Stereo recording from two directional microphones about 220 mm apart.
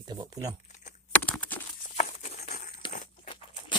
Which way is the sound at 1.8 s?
35° left (ahead or behind).